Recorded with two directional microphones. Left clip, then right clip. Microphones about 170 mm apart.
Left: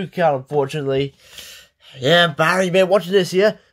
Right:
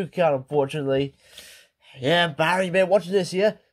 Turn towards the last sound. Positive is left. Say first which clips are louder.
# left 6 dB
turn(degrees=5)  # may be behind; listen again after turning